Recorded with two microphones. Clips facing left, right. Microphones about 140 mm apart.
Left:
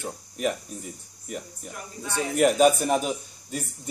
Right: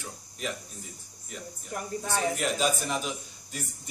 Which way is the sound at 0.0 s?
55° left (ahead or behind).